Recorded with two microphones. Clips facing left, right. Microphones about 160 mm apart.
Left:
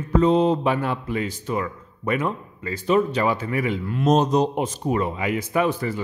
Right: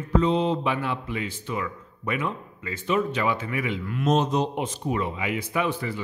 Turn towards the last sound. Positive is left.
turn(degrees=45)  # may be behind; listen again after turning